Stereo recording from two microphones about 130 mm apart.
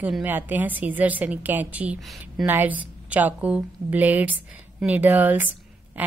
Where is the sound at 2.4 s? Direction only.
15° right (ahead or behind).